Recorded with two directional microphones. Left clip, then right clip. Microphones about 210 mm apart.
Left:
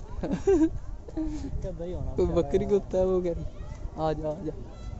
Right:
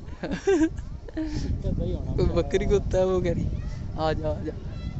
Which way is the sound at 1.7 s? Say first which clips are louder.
Right 2 dB; 45° right (ahead or behind).